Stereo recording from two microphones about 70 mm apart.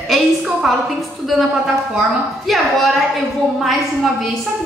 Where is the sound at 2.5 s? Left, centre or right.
Centre.